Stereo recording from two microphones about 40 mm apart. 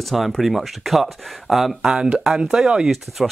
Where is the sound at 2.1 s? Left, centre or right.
Centre.